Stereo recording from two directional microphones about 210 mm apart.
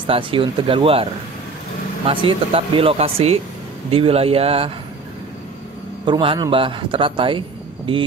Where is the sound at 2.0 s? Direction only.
25° right (ahead or behind).